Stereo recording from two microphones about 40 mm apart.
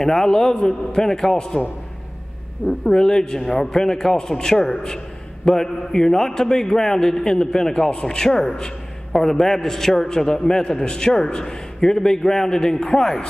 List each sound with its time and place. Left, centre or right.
0.0 s a man's voice: centre
2.8 s a man's voice: centre